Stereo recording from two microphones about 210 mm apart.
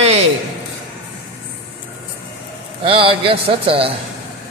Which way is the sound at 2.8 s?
25° right (ahead or behind).